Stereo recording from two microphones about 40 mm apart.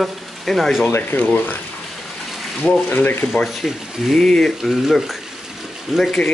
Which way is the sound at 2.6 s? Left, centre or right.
Left.